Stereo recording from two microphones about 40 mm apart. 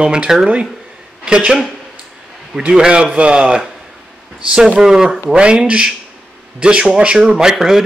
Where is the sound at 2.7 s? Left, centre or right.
Right.